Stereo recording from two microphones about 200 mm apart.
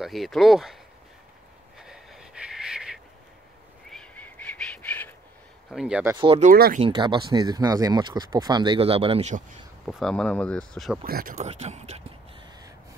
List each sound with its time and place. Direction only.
0.0 s speech: centre (ahead or behind)
1.8 s a sound: 5° right (ahead or behind)
3.9 s bird: 5° left (ahead or behind)
5.7 s speech: 5° right (ahead or behind)
6.1 s speech: 25° right (ahead or behind)
6.4 s speech: 45° right (ahead or behind)
6.8 s speech: 25° right (ahead or behind)
9.8 s speech: centre (ahead or behind)
11.1 s speech: 45° right (ahead or behind)